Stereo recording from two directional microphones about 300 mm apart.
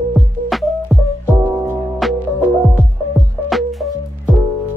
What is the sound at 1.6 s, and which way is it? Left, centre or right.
Music, centre.